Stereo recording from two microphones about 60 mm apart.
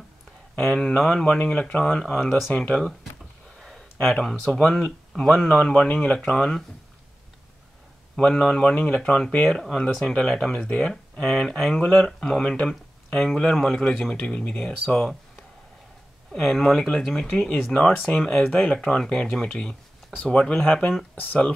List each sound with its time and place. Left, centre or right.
0.6 s speech: centre
3.5 s speech: centre
8.2 s speech: centre
16.3 s speech: centre
18.4 s speech: centre
21.1 s speech: left